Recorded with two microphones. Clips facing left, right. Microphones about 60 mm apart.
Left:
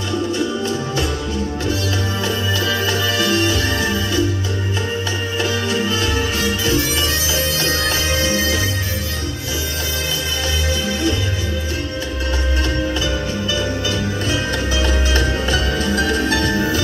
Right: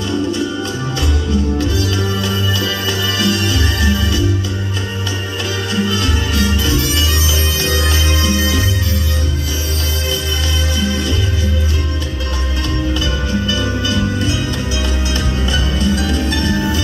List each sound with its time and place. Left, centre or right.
2.2 s music: left
5.7 s music: left
14.8 s music: left